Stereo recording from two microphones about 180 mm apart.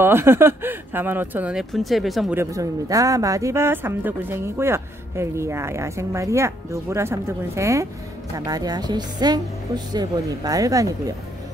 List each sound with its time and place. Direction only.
0.0 s a man's voice: 15° right (ahead or behind)
2.3 s a man's voice: 20° right (ahead or behind)